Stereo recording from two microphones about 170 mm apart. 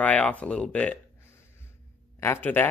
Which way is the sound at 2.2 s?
10° left (ahead or behind).